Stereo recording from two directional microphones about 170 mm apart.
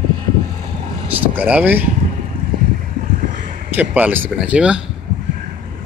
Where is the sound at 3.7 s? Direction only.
10° right (ahead or behind).